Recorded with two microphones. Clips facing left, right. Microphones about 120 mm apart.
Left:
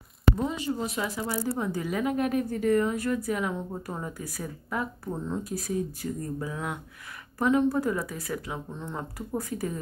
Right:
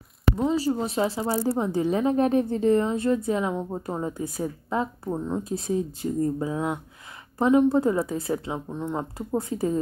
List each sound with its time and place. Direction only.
0.4 s speech: 30° right (ahead or behind)
8.7 s speech: 15° right (ahead or behind)